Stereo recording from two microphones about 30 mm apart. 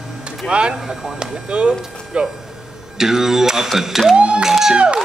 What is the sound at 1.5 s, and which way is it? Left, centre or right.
Speech, right.